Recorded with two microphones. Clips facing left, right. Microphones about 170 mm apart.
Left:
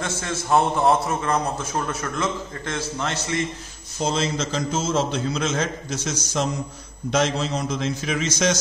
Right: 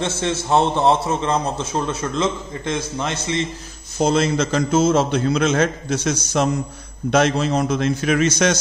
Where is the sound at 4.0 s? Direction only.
60° right (ahead or behind).